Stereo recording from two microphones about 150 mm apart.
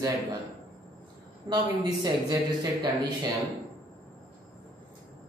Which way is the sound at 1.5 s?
25° right (ahead or behind).